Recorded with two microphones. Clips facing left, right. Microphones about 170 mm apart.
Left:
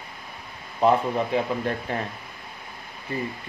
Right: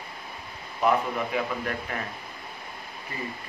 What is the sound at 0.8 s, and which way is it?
Speech, 30° left (ahead or behind).